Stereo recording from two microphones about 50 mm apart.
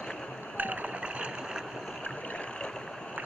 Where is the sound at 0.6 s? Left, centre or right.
Right.